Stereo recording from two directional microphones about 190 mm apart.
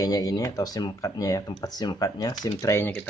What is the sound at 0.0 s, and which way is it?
Speech, 20° left (ahead or behind).